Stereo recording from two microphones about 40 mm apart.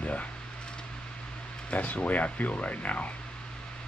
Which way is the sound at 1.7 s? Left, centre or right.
Left.